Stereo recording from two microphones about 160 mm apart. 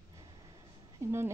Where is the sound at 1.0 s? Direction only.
20° right (ahead or behind).